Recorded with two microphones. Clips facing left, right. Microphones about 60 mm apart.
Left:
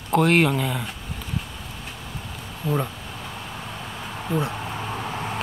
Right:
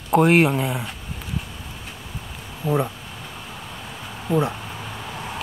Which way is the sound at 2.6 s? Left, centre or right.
Centre.